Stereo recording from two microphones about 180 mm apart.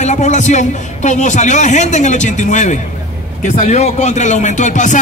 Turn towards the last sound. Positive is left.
turn(degrees=45)  # may be behind; listen again after turning